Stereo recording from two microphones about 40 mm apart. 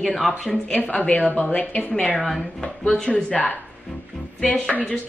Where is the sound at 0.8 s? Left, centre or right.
Left.